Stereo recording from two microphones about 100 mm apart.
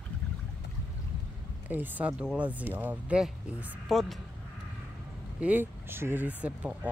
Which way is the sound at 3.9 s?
Centre (ahead or behind).